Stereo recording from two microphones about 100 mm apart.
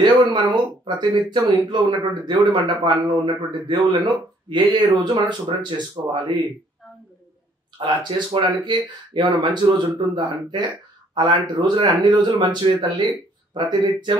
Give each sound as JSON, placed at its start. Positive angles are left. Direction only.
{"t": 0.0, "sound": "speech", "side_deg": -45}
{"t": 6.0, "sound": "speech", "side_deg": -35}
{"t": 7.8, "sound": "speech", "side_deg": -50}